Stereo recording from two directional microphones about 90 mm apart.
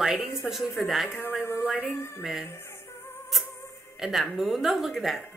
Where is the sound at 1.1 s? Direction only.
25° left (ahead or behind).